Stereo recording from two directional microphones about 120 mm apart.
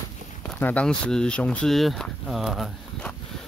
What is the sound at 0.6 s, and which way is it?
Speech, 10° left (ahead or behind).